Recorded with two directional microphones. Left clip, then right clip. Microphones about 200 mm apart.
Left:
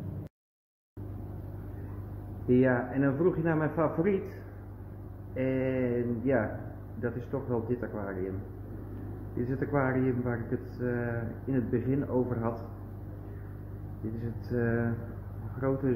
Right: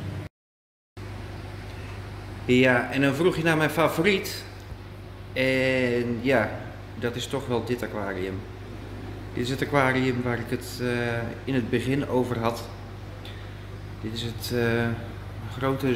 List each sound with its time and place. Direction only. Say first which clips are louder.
2.4 s speech: right 6 dB; 20° right (ahead or behind)
5.3 s speech: right 8 dB; 20° right (ahead or behind)
9.4 s speech: right 7 dB; 20° right (ahead or behind)
14.1 s speech: right 6 dB; 25° right (ahead or behind)